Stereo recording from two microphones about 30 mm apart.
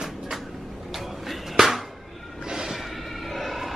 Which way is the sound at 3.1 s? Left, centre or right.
Centre.